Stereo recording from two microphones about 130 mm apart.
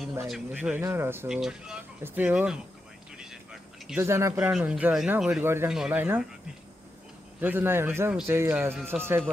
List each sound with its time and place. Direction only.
0.3 s speech: 10° right (ahead or behind)
1.3 s speech: 5° right (ahead or behind)
4.0 s speech: 20° right (ahead or behind)
4.4 s speech: 5° right (ahead or behind)
5.4 s speech: 20° right (ahead or behind)
5.7 s speech: 5° right (ahead or behind)
7.3 s speech: 15° right (ahead or behind)